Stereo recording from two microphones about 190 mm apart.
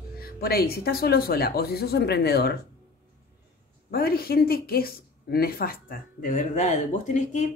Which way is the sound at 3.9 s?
55° left (ahead or behind).